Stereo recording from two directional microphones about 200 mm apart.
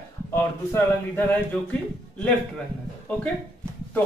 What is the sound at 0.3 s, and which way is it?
Speech, 10° left (ahead or behind).